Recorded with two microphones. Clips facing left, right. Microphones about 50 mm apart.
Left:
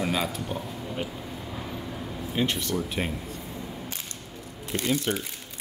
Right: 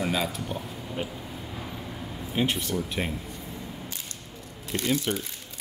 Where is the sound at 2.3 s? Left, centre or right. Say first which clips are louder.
Even; centre.